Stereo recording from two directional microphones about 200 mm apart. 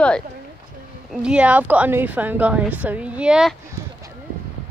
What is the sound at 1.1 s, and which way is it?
Speech, 5° right (ahead or behind).